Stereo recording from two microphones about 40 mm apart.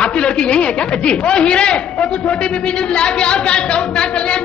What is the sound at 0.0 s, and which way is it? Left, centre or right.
A man's voice, left.